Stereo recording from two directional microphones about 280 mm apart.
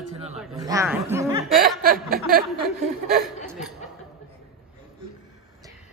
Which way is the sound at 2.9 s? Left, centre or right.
Right.